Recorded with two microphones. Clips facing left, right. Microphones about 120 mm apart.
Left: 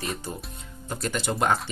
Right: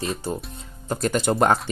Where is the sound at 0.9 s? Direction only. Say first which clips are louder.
Right 7 dB; 45° right (ahead or behind).